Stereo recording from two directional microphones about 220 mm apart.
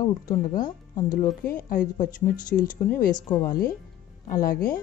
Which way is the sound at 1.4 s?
40° left (ahead or behind).